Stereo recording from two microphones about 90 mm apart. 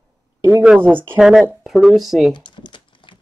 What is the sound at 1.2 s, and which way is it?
Speech, 5° right (ahead or behind).